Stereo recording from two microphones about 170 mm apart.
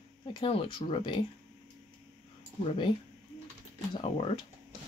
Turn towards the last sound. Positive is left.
turn(degrees=35)  # may be behind; listen again after turning